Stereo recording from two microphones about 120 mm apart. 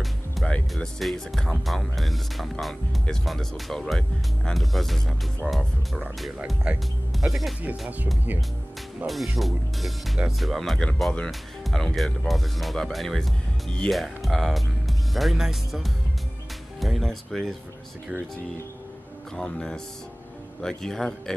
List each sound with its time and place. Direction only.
0.0 s speech: 5° left (ahead or behind)
9.0 s speech: centre (ahead or behind)
19.3 s speech: 5° left (ahead or behind)